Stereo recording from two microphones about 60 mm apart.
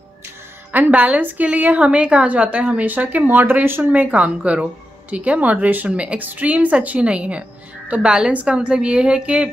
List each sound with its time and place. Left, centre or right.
0.7 s a woman's voice: right